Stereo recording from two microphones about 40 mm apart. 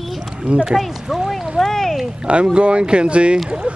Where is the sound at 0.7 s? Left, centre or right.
Centre.